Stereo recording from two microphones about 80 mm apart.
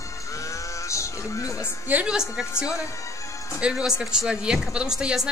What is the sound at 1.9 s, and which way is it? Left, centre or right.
Speech, centre.